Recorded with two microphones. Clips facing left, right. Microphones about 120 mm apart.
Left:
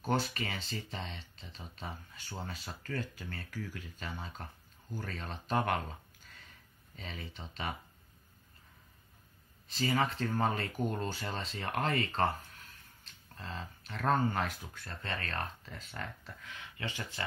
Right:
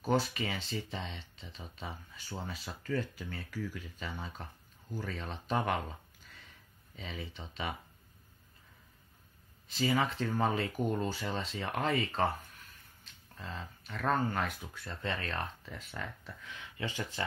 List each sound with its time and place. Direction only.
0.0 s speech: 5° right (ahead or behind)
7.0 s speech: 5° right (ahead or behind)
9.8 s speech: 5° right (ahead or behind)
13.4 s speech: centre (ahead or behind)
15.0 s speech: 15° right (ahead or behind)